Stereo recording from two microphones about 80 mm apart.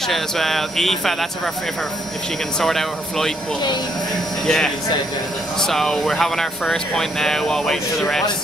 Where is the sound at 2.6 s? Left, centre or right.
Centre.